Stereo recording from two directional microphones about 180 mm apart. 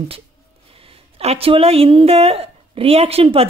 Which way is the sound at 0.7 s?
30° right (ahead or behind).